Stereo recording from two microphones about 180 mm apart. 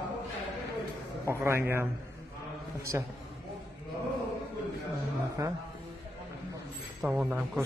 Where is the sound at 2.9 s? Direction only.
15° right (ahead or behind).